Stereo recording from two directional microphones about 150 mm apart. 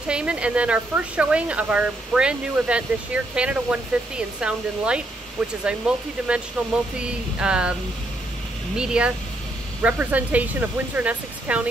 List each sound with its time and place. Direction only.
0.1 s speech: 5° right (ahead or behind)
8.7 s speech: 5° right (ahead or behind)